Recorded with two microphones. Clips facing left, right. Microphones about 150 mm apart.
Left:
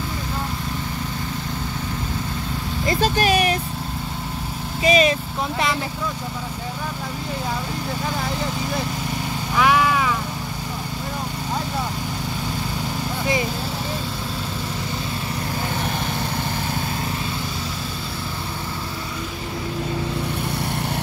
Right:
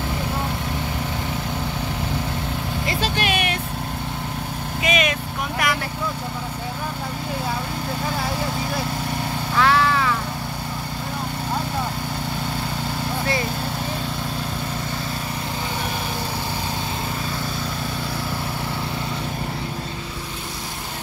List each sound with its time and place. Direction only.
2.9 s speech: 40° left (ahead or behind)
4.8 s speech: 35° left (ahead or behind)
9.6 s vehicle: 15° left (ahead or behind)